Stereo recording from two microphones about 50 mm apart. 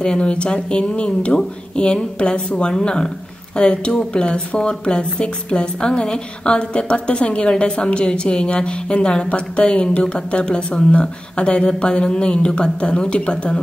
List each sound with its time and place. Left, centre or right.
0.0 s a woman's voice: centre